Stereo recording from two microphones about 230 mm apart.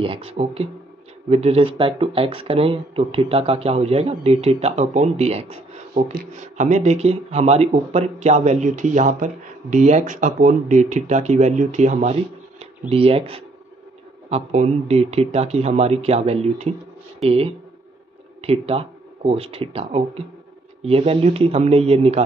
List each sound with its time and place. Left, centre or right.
0.0 s speech: right